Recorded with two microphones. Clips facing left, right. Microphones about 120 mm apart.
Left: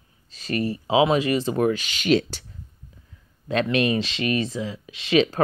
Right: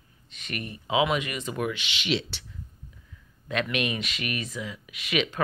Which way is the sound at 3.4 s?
30° left (ahead or behind).